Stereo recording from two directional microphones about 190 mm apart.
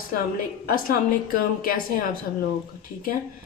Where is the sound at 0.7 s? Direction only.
50° left (ahead or behind).